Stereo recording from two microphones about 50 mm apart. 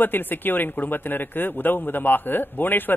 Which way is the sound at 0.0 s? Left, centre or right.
Left.